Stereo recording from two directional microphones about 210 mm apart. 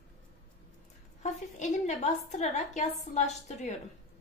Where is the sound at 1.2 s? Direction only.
35° left (ahead or behind).